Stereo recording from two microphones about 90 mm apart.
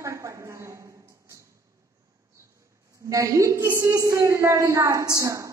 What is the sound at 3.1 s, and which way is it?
A woman's voice, 35° right (ahead or behind).